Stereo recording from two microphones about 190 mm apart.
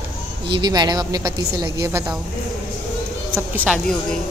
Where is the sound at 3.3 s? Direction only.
10° right (ahead or behind).